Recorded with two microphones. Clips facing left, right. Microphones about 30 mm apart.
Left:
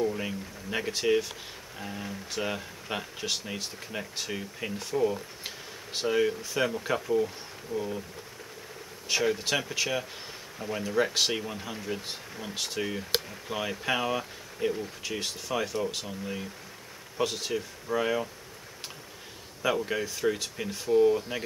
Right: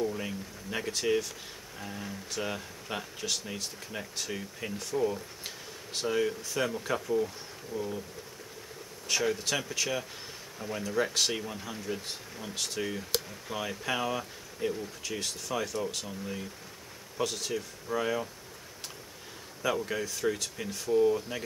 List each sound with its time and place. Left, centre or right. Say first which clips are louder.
0.0 s speech: left 3 dB; centre
9.0 s speech: left 2 dB; centre
19.6 s speech: left 3 dB; centre